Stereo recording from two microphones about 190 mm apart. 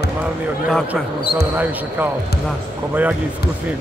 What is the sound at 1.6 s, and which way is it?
Speech, 10° right (ahead or behind).